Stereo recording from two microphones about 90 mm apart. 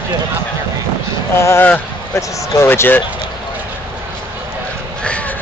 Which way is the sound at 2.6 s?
25° left (ahead or behind).